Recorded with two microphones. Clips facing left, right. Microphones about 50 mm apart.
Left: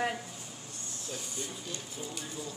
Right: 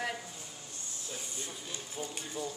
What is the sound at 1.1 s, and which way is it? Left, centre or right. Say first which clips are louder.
Speech: left 3 dB; right.